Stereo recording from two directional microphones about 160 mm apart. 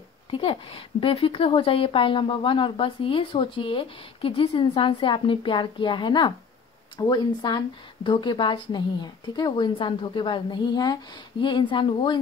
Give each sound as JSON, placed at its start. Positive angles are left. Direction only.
{"t": 0.3, "sound": "a woman's voice", "side_deg": 35}